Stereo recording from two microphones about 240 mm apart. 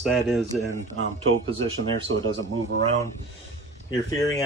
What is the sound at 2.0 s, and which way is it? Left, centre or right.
Speech, right.